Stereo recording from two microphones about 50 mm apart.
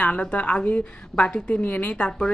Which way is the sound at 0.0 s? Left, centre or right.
Left.